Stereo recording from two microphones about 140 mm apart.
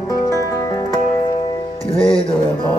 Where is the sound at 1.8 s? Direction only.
40° left (ahead or behind).